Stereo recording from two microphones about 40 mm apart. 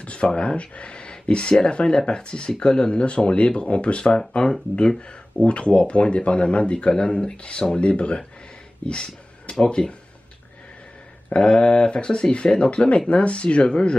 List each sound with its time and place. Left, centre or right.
0.0 s a sound: left
0.4 s speech: left
4.4 s speech: centre
5.5 s speech: left
11.2 s speech: left